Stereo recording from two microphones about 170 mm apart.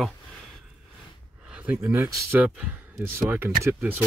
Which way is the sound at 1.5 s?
10° right (ahead or behind).